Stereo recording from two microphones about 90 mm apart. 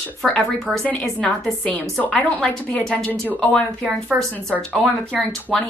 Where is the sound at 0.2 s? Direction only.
Centre (ahead or behind).